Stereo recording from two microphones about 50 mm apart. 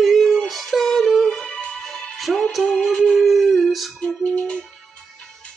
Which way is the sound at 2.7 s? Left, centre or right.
Centre.